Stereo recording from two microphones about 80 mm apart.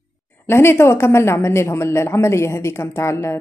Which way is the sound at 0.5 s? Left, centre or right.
Left.